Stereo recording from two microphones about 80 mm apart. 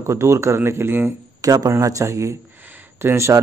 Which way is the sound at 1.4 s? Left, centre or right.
Right.